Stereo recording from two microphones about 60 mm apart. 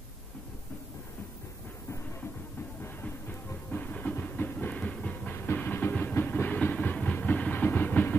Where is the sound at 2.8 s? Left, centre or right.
Left.